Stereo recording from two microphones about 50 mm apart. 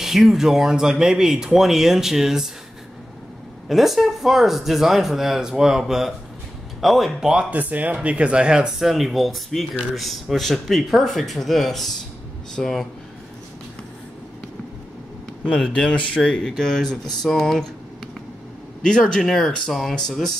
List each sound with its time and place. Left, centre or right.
0.0 s speech: centre
3.6 s speech: centre
7.5 s speech: right; by 12.8 s centre
15.4 s speech: centre
16.3 s speech: centre
19.2 s speech: centre